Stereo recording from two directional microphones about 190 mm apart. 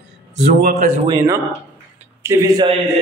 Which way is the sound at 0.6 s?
50° right (ahead or behind).